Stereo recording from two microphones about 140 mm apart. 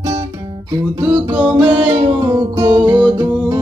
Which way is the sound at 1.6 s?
40° right (ahead or behind).